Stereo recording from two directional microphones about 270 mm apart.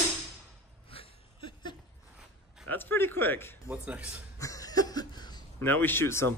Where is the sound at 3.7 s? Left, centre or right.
Centre.